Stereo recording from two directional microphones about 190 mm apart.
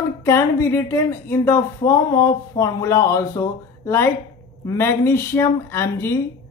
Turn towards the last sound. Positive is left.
turn(degrees=15)  # may be behind; listen again after turning